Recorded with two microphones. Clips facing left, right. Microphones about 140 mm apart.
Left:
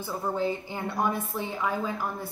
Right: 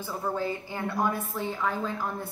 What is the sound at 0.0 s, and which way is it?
A woman's voice, 15° left (ahead or behind).